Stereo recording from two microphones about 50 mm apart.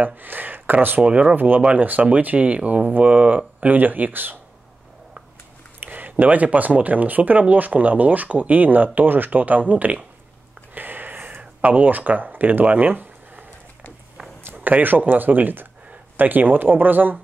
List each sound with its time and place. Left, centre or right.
0.0 s speech: right
1.0 s speech: right
1.6 s speech: right
5.8 s speech: right
10.7 s a sound: right
14.4 s speech: right